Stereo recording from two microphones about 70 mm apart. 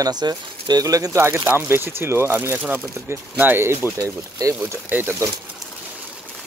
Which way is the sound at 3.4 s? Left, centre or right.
Right.